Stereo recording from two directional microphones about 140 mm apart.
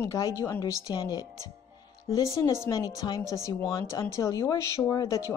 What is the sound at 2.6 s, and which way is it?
A woman's voice, 25° left (ahead or behind).